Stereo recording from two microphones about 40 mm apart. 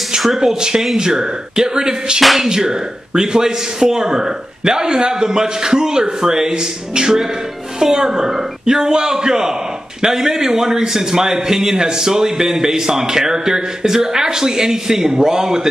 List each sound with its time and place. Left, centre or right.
0.4 s a man's voice: centre
2.2 s speech: centre
2.5 s a man's voice: centre